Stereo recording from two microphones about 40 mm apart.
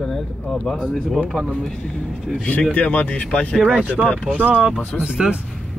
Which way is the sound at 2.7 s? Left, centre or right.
Left.